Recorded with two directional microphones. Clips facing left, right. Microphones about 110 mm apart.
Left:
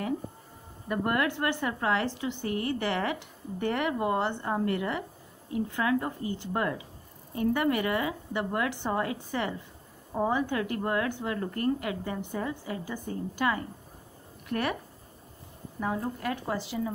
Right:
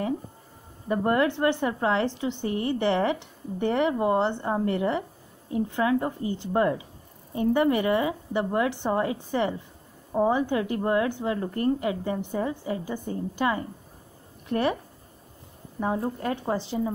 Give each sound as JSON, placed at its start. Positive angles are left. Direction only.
{"t": 0.8, "sound": "speech", "side_deg": -25}
{"t": 15.8, "sound": "speech", "side_deg": -30}